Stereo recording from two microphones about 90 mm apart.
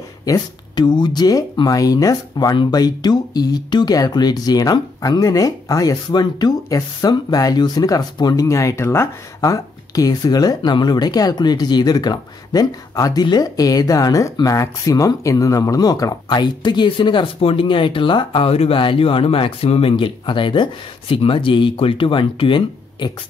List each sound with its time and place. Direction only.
0.2 s speech: 45° left (ahead or behind)
2.5 s speech: 55° left (ahead or behind)
8.5 s speech: 35° left (ahead or behind)
16.3 s speech: 55° left (ahead or behind)